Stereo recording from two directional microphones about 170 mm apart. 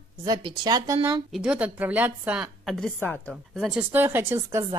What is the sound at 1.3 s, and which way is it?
A woman's voice, 5° right (ahead or behind).